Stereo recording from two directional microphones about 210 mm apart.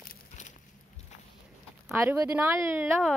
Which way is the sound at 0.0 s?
40° left (ahead or behind).